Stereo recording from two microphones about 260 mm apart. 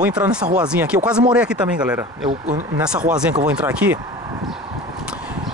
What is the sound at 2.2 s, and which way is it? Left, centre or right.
Speech, right.